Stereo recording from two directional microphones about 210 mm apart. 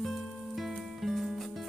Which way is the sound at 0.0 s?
Centre (ahead or behind).